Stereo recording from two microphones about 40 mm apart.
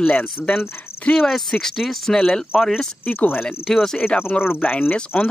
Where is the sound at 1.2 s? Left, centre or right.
Centre.